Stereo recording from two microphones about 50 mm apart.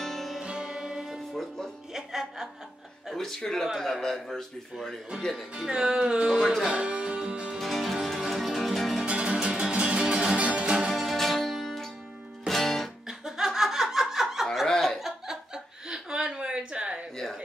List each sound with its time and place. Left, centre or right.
0.0 s music: centre
0.4 s music: centre
1.3 s music: centre
2.0 s music: centre
3.2 s a man's voice: centre
5.3 s speech: centre
6.3 s speech: centre
6.6 s music: right
7.4 s music: centre
9.0 s music: right
10.9 s music: centre
13.2 s laughter: centre
15.0 s chuckle: centre
15.5 s chuckle: centre